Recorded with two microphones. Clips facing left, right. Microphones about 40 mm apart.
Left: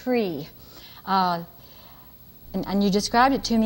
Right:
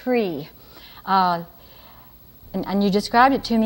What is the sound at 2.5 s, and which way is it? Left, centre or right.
A woman's voice, centre.